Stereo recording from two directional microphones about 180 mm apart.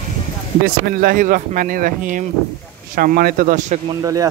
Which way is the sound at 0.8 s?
50° right (ahead or behind).